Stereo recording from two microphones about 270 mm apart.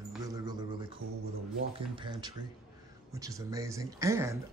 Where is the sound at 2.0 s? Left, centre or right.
Centre.